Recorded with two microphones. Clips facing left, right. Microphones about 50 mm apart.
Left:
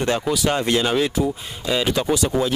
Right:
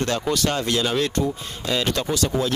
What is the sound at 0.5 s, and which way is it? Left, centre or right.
Speech, left.